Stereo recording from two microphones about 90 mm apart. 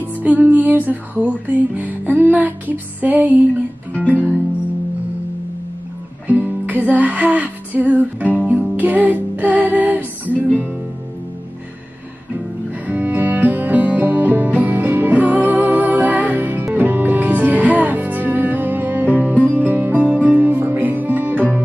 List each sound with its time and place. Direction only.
0.2 s music: 20° right (ahead or behind)
6.2 s music: 20° right (ahead or behind)
12.8 s music: 20° right (ahead or behind)